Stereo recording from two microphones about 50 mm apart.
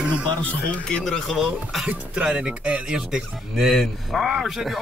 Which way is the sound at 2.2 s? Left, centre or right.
Centre.